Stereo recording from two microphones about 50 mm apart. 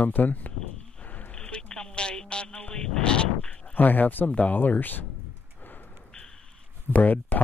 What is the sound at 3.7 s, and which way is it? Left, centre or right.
Speech, left.